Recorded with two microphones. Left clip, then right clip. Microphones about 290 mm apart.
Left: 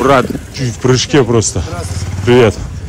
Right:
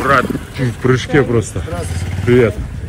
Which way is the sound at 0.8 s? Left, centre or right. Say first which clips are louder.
Left 3 dB; centre.